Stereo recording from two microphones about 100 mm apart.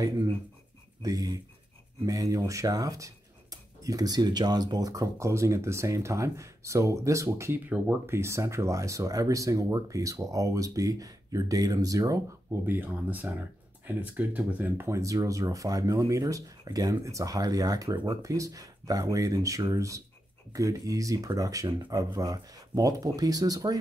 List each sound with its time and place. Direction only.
1.0 s speech: 35° right (ahead or behind)
12.4 s speech: 20° right (ahead or behind); by 23.8 s 40° right (ahead or behind)